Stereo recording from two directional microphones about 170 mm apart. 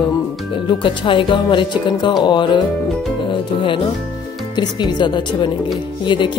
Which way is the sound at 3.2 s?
30° left (ahead or behind).